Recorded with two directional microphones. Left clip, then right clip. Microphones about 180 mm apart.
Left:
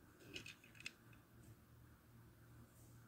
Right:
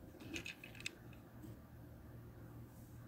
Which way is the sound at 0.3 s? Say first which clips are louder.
Right 6 dB; 10° right (ahead or behind).